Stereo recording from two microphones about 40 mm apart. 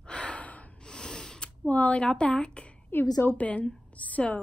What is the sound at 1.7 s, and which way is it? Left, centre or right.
Speech, left.